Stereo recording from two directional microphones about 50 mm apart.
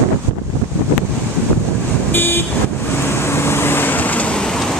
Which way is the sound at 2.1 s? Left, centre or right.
Left.